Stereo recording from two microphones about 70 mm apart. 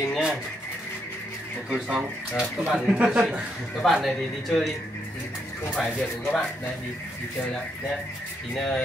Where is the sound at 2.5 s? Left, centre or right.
Centre.